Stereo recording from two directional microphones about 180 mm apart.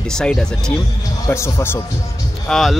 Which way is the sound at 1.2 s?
15° left (ahead or behind).